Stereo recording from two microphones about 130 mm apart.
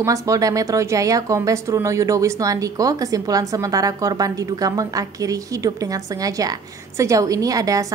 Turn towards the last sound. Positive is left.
turn(degrees=-25)  # may be behind; listen again after turning